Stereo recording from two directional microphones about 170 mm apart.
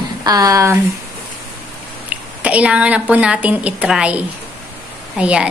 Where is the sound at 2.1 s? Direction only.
10° right (ahead or behind).